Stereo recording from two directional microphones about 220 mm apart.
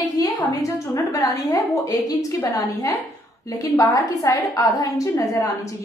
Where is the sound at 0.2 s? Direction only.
15° left (ahead or behind).